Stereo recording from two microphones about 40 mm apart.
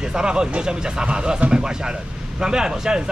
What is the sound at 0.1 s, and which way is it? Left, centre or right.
Speech, right.